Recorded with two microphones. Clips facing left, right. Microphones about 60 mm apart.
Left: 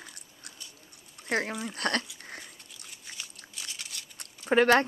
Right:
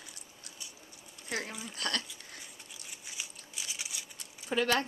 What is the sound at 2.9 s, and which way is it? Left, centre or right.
Biting, centre.